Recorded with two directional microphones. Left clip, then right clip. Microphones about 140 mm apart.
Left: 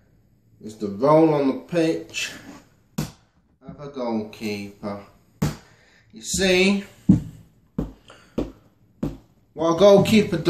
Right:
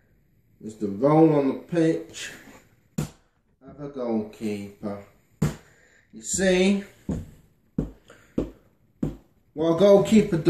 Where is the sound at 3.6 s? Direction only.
35° right (ahead or behind).